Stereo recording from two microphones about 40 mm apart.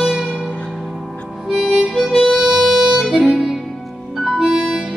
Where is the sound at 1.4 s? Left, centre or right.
Centre.